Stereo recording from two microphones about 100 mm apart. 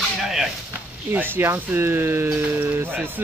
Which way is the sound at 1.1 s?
20° right (ahead or behind).